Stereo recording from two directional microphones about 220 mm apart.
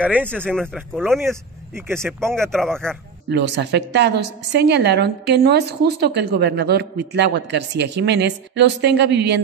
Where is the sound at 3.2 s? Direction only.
50° right (ahead or behind).